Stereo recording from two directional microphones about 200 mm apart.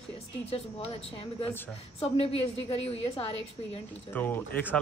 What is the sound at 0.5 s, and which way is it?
Speech, 25° left (ahead or behind).